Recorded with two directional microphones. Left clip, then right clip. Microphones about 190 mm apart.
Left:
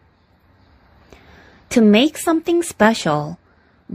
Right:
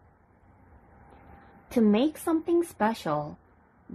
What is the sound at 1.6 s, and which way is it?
Speech, 35° left (ahead or behind).